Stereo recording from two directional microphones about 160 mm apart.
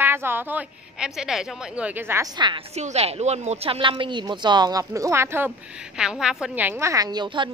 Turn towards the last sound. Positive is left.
turn(degrees=-30)  # may be behind; listen again after turning